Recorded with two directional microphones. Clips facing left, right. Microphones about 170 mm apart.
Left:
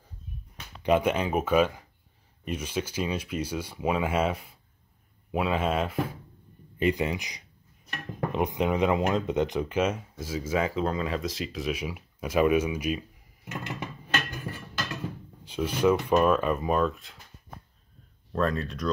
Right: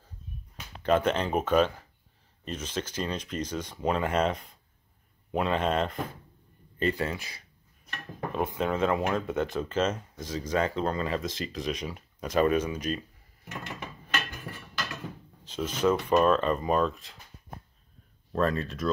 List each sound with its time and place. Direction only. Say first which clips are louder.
0.8 s speech: left 1 dB; 10° left (ahead or behind)
15.4 s speech: left 2 dB; 10° left (ahead or behind)
18.3 s speech: even; centre (ahead or behind)